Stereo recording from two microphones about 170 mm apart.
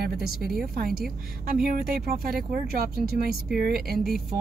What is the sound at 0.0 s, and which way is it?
Speech, 60° right (ahead or behind).